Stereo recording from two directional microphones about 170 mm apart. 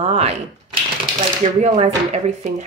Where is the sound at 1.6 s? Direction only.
40° right (ahead or behind).